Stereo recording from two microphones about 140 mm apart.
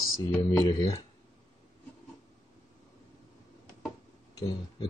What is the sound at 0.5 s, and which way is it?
Speech, 35° left (ahead or behind).